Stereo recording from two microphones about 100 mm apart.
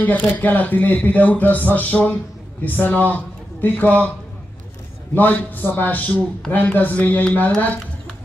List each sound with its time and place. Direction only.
0.0 s speech: 15° left (ahead or behind)
5.1 s speech: 15° left (ahead or behind)